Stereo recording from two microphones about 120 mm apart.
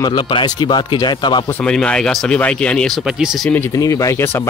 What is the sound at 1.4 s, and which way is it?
Speech, 10° left (ahead or behind).